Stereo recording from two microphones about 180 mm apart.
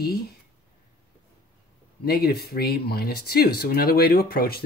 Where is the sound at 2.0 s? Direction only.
60° left (ahead or behind).